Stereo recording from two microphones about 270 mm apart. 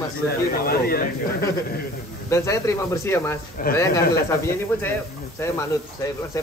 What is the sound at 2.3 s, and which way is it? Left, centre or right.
Speech, centre.